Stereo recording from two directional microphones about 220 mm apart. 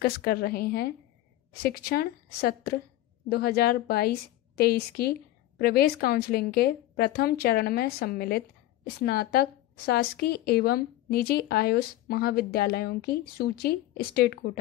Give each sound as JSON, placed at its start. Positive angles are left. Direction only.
{"t": 0.0, "sound": "a woman's voice", "side_deg": 45}